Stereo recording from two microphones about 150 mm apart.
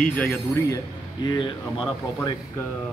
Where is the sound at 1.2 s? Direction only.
35° left (ahead or behind).